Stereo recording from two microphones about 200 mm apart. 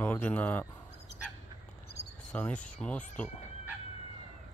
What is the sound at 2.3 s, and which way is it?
Speech, 5° left (ahead or behind).